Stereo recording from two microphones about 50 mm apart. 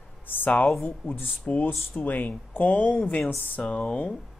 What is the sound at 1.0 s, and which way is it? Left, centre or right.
Speech, left.